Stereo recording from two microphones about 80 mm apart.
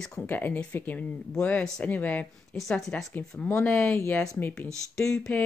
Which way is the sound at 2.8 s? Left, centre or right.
Centre.